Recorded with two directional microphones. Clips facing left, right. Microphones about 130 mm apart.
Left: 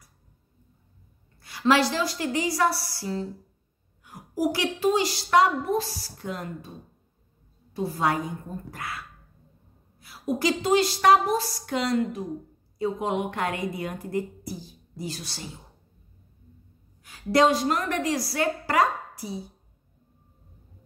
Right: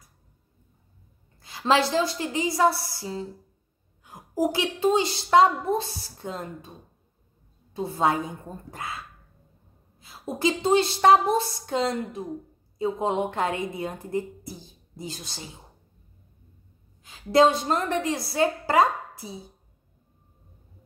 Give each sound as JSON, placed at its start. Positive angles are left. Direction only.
{"t": 1.4, "sound": "a woman's voice", "side_deg": -20}
{"t": 7.7, "sound": "a woman's voice", "side_deg": -25}
{"t": 17.0, "sound": "a woman's voice", "side_deg": -20}